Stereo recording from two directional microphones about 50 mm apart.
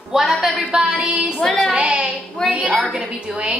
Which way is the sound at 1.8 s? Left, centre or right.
Right.